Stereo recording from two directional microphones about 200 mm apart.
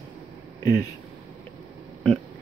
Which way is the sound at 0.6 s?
20° left (ahead or behind).